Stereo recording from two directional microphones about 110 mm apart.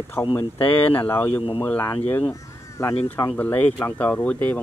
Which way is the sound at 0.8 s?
15° left (ahead or behind).